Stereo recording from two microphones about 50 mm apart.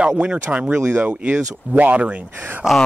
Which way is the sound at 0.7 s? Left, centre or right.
Right.